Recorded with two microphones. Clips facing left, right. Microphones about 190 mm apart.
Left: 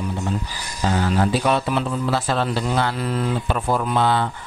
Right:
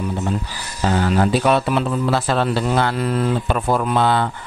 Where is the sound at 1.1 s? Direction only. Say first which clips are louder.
Right 4 dB; 60° right (ahead or behind).